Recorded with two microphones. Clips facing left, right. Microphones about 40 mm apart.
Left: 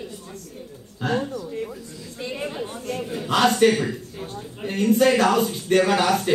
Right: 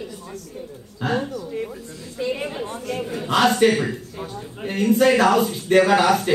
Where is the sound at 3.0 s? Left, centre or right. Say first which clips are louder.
Right 1 dB; centre.